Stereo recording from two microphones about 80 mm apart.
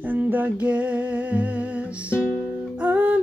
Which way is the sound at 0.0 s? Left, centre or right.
Right.